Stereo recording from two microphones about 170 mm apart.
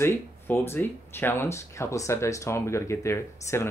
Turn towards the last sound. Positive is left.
turn(degrees=15)  # may be behind; listen again after turning